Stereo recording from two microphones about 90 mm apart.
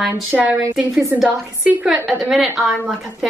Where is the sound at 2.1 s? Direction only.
5° right (ahead or behind).